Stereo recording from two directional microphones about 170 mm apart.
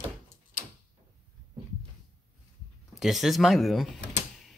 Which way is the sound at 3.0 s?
Centre (ahead or behind).